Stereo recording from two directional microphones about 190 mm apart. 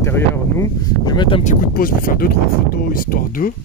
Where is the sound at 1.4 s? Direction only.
50° left (ahead or behind).